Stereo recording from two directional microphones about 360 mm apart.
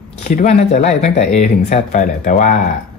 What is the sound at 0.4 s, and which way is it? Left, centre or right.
Speech, centre.